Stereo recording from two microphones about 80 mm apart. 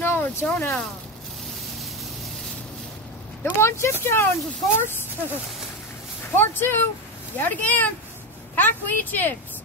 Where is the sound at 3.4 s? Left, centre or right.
Left.